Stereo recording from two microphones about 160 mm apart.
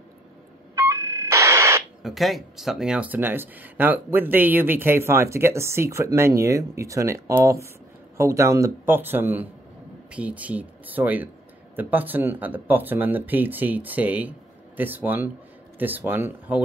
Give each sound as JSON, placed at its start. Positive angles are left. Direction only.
{"t": 0.7, "sound": "radio", "side_deg": -15}
{"t": 2.0, "sound": "speech", "side_deg": 0}